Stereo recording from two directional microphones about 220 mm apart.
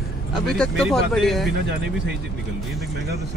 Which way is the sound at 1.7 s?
50° right (ahead or behind).